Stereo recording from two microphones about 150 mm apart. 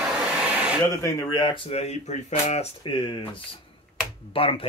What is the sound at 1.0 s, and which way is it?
Speech, 20° left (ahead or behind).